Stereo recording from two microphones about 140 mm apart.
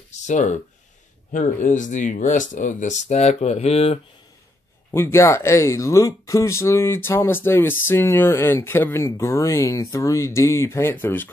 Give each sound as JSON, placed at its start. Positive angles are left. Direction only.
{"t": 0.2, "sound": "speech", "side_deg": 60}
{"t": 4.9, "sound": "speech", "side_deg": 20}